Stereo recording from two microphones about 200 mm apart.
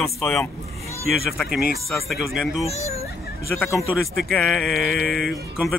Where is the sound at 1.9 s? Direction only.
Centre (ahead or behind).